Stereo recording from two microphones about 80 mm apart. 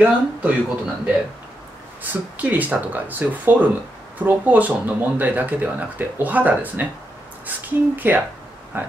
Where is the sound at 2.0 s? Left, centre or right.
Right.